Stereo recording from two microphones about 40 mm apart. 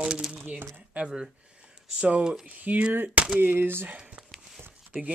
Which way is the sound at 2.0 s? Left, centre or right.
Right.